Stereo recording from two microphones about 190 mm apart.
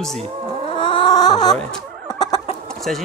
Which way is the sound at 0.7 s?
25° left (ahead or behind).